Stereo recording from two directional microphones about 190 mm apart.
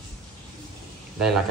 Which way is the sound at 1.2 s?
Centre (ahead or behind).